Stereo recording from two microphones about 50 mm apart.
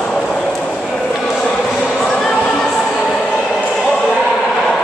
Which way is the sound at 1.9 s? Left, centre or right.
Centre.